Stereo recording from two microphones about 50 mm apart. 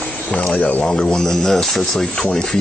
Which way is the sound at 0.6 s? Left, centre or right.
Left.